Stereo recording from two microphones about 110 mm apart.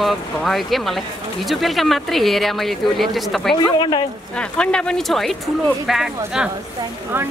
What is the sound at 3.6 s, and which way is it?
Speech, 45° left (ahead or behind).